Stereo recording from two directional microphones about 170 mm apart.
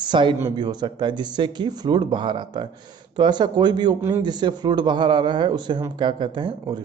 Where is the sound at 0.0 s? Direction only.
25° right (ahead or behind).